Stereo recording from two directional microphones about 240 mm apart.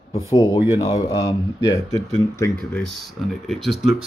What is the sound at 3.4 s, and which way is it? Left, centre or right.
Speech, centre.